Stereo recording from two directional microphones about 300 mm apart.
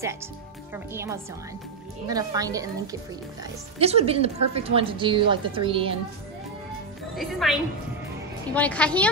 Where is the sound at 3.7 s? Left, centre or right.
Centre.